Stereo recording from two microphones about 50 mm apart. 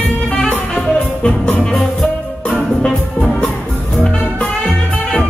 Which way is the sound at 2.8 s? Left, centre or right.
Centre.